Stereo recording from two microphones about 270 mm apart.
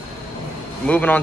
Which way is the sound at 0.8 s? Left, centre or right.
Centre.